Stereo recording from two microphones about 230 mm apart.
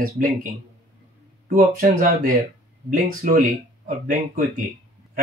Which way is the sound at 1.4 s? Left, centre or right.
Right.